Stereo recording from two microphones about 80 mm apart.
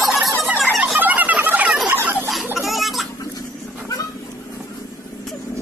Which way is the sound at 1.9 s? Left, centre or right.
Right.